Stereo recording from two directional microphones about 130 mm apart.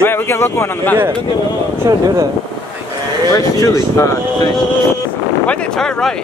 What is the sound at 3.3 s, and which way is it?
Speech, 25° left (ahead or behind).